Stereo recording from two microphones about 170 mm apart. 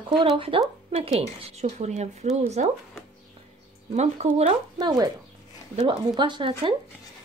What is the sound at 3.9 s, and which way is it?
Speech, 40° right (ahead or behind).